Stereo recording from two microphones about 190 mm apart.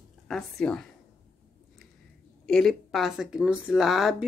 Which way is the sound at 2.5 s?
5° left (ahead or behind).